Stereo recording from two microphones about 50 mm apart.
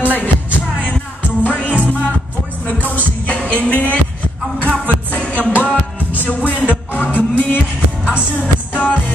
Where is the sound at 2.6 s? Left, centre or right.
Left.